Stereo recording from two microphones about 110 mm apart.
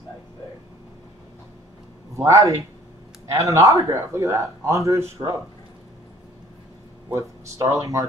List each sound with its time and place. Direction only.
2.1 s a man's voice: 30° right (ahead or behind)
7.1 s a man's voice: 30° right (ahead or behind)